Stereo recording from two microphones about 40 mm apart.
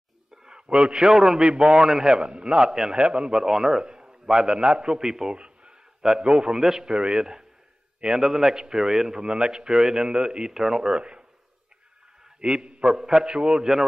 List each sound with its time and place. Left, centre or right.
0.4 s a man's voice: centre
3.0 s a man's voice: right
3.3 s a man's voice: centre
12.4 s a man's voice: right